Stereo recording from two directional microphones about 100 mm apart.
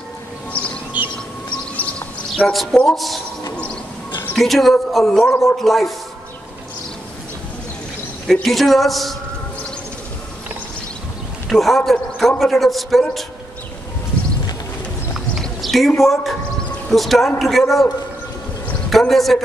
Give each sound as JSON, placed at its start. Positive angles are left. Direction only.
{"t": 1.8, "sound": "chirp", "side_deg": 10}
{"t": 4.4, "sound": "a man's voice", "side_deg": 0}
{"t": 8.3, "sound": "a man's voice", "side_deg": 0}
{"t": 11.4, "sound": "a man's voice", "side_deg": 0}
{"t": 15.1, "sound": "clip-clop", "side_deg": 0}
{"t": 16.0, "sound": "a man's voice", "side_deg": 0}
{"t": 18.9, "sound": "a man's voice", "side_deg": 0}